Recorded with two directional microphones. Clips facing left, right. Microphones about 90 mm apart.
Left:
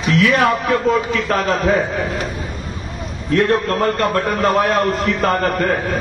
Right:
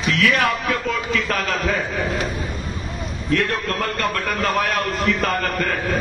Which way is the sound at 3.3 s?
30° left (ahead or behind).